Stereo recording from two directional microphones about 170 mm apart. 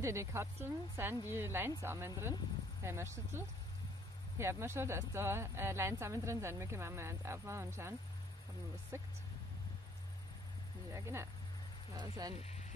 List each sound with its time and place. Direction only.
0.0 s speech: 15° right (ahead or behind)
8.9 s speech: 15° right (ahead or behind)
10.9 s speech: 15° right (ahead or behind)
12.4 s speech: 40° left (ahead or behind)